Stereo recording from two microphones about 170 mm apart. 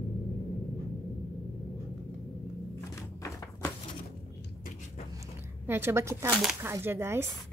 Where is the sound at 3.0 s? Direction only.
15° left (ahead or behind).